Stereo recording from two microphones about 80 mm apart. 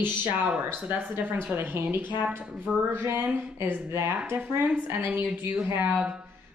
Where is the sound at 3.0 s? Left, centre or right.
Right.